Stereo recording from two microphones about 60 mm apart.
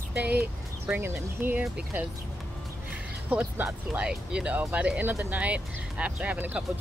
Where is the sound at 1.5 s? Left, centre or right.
Right.